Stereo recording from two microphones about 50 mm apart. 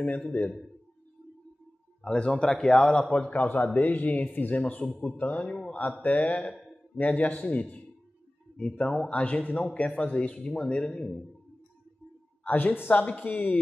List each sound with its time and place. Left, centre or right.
0.0 s a man's voice: left
2.0 s a man's voice: left
3.3 s a man's voice: left
10.9 s a man's voice: centre
12.4 s a man's voice: left